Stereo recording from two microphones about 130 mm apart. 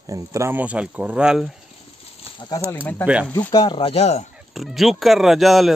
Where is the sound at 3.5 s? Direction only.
35° left (ahead or behind); by 4.2 s 55° left (ahead or behind).